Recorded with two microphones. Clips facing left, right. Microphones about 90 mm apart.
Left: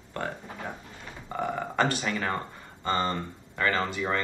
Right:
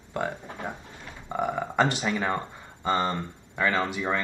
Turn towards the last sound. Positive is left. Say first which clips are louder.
# right 1 dB
turn(degrees=-15)  # may be behind; listen again after turning